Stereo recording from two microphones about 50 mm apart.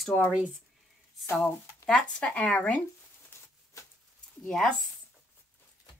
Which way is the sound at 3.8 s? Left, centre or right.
Left.